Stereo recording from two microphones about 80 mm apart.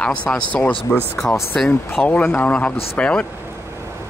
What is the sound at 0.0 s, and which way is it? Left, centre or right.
Speech, centre.